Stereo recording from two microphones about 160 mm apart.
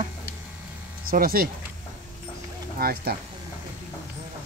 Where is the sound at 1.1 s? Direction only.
65° right (ahead or behind).